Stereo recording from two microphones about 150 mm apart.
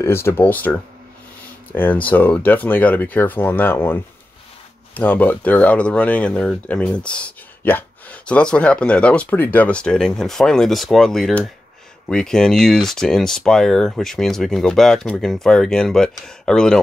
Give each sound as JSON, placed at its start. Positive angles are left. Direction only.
{"t": 0.0, "sound": "speech", "side_deg": 15}